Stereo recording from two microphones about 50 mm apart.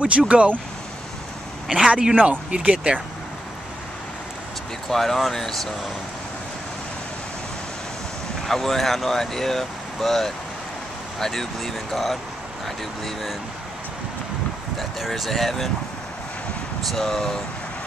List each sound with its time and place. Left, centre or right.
0.3 s speech: right
1.7 s a man's voice: centre
2.1 s speech: right
4.8 s speech: centre
8.5 s speech: centre
14.8 s speech: centre
16.9 s speech: centre